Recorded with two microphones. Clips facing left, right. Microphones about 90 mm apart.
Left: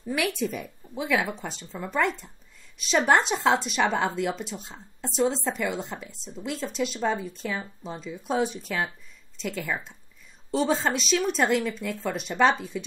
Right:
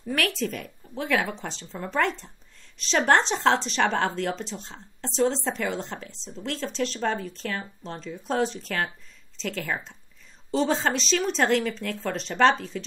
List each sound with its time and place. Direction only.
0.0 s speech: 15° left (ahead or behind)